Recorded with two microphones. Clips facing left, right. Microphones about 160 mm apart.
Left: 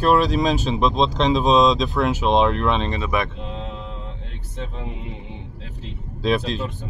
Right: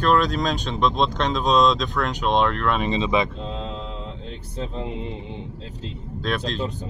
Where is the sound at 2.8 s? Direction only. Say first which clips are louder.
Right 2 dB; 20° right (ahead or behind).